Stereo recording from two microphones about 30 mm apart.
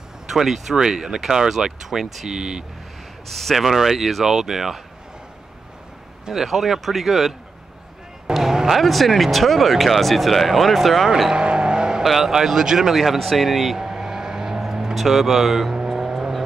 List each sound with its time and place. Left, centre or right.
0.3 s speech: centre
0.7 s speech: right
3.3 s speech: centre
3.5 s speech: centre
6.4 s speech: centre
8.3 s a sound: centre
8.6 s speech: centre
11.3 s vehicle: right
12.0 s speech: centre
12.9 s speech: centre
13.7 s vehicle: centre
15.0 s speech: centre
15.9 s vehicle: centre